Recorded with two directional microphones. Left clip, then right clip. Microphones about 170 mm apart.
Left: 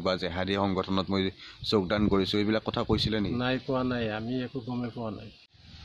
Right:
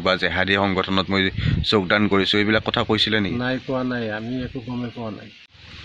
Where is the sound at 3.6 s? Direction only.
15° left (ahead or behind).